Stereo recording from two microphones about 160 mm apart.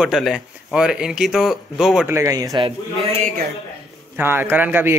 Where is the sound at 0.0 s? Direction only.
Centre (ahead or behind).